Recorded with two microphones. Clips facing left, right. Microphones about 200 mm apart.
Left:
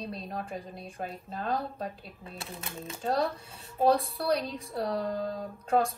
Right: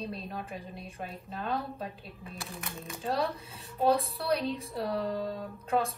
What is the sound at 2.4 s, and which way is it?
Speech, 25° left (ahead or behind).